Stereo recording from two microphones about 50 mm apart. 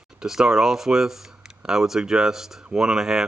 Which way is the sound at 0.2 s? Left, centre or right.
Centre.